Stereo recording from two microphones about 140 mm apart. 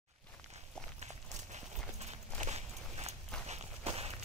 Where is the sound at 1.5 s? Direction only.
55° right (ahead or behind).